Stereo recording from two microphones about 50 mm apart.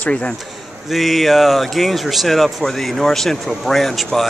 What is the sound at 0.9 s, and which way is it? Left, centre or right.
A man's voice, centre.